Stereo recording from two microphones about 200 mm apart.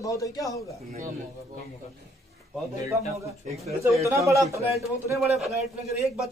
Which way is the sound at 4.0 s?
15° right (ahead or behind).